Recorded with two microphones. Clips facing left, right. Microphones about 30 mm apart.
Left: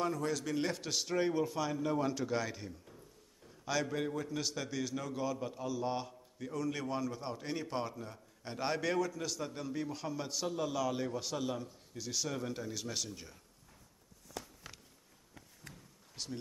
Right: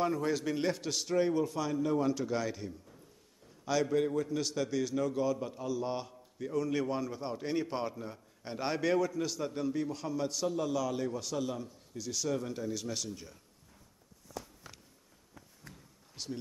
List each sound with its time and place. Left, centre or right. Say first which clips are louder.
0.0 s a man's voice: right 3 dB; centre
0.3 s a man's voice: right 4 dB; centre
0.6 s a man's voice: right 2 dB; centre
14.7 s a sound: even; left
16.2 s speech: right 2 dB; centre